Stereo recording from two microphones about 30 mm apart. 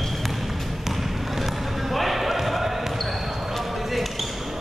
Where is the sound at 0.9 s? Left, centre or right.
Centre.